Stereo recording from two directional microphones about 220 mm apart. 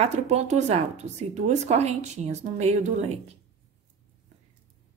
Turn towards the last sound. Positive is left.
turn(degrees=-30)  # may be behind; listen again after turning